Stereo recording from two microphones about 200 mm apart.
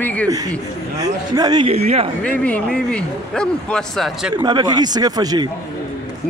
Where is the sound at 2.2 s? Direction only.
5° left (ahead or behind).